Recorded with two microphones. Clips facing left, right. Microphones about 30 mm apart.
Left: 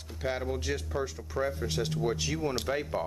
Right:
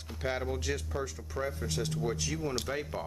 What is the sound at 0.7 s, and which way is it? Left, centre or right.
Speech, centre.